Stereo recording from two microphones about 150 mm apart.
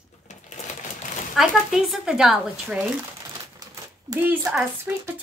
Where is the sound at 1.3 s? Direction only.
Centre (ahead or behind).